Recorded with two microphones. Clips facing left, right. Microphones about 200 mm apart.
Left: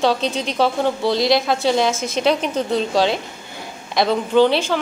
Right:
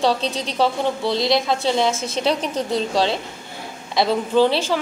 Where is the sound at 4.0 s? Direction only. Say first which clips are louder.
Left 2 dB; centre (ahead or behind).